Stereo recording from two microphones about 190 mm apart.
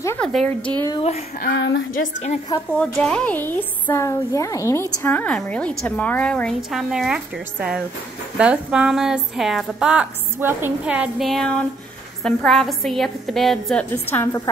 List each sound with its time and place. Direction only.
0.0 s a sound: 10° left (ahead or behind)
0.3 s a woman's voice: centre (ahead or behind)
1.4 s a woman's voice: 65° left (ahead or behind)
2.8 s a woman's voice: 5° left (ahead or behind)